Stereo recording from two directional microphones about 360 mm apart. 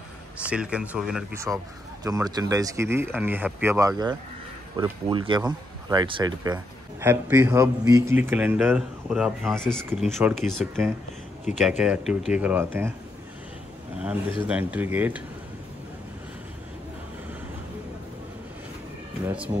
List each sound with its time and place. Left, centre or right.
0.4 s speech: centre
11.5 s speech: left
11.8 s speech: centre
14.5 s speech: centre
19.2 s speech: centre